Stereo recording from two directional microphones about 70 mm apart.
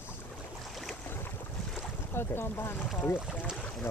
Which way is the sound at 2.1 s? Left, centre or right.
Left.